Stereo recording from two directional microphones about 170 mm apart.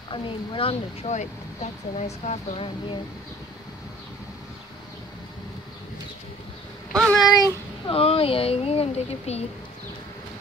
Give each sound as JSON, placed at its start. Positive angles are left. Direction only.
{"t": 0.1, "sound": "speech", "side_deg": 30}
{"t": 6.9, "sound": "a child's voice", "side_deg": 5}
{"t": 7.4, "sound": "speech", "side_deg": 30}